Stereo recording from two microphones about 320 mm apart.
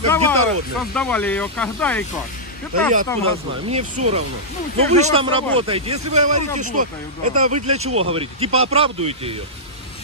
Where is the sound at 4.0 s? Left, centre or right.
Right.